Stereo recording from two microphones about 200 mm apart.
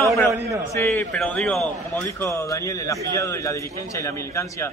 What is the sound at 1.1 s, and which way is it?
Speech, 5° left (ahead or behind).